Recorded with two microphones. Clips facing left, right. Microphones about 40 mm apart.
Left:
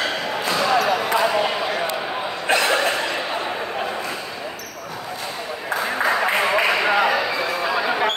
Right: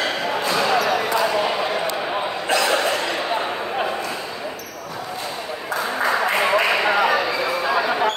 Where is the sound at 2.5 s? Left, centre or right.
Left.